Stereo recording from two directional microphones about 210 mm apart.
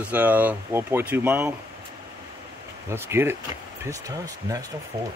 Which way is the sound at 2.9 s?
10° right (ahead or behind).